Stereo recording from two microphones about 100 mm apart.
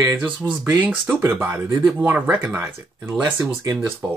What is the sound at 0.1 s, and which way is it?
Speech, 15° right (ahead or behind).